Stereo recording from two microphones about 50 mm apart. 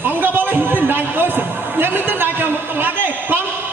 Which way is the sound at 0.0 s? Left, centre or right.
Right.